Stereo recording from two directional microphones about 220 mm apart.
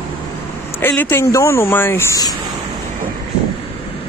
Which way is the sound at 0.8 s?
10° left (ahead or behind).